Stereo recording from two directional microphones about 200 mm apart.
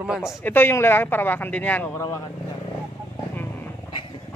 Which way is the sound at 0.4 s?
10° left (ahead or behind).